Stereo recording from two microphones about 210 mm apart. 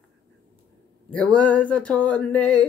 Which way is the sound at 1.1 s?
5° left (ahead or behind).